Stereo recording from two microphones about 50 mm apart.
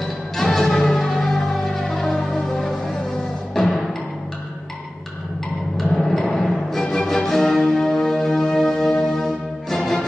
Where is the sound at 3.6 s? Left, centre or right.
Centre.